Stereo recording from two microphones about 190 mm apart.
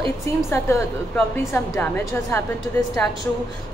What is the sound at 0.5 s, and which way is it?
Speech, 15° left (ahead or behind).